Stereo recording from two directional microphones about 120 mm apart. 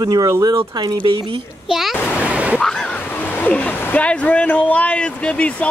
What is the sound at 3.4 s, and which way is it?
Speech, 15° left (ahead or behind).